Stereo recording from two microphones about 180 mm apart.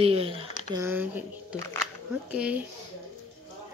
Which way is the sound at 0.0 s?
30° right (ahead or behind).